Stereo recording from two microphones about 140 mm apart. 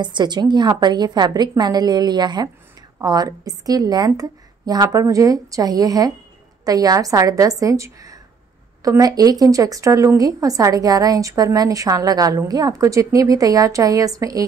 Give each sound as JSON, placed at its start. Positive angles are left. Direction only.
{"t": 0.0, "sound": "a woman's voice", "side_deg": -30}